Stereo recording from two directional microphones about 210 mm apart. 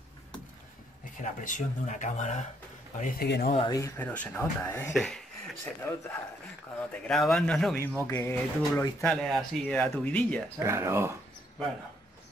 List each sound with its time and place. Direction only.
1.1 s speech: 40° left (ahead or behind)
3.0 s speech: 50° left (ahead or behind)
3.5 s speech: 20° left (ahead or behind)
4.9 s speech: centre (ahead or behind)
10.6 s speech: 15° right (ahead or behind)